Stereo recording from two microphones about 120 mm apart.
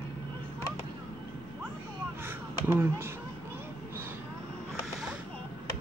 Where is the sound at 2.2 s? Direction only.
20° right (ahead or behind).